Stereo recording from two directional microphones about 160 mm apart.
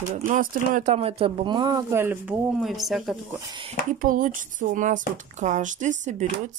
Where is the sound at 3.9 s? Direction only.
55° right (ahead or behind).